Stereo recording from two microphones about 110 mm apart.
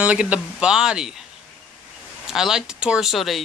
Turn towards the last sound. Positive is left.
turn(degrees=0)  # may be behind; listen again after turning